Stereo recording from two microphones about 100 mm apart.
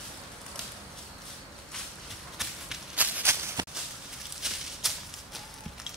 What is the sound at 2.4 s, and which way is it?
Whip, centre (ahead or behind).